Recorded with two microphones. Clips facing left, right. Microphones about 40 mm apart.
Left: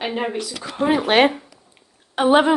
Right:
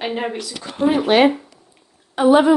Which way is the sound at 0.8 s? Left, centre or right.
Left.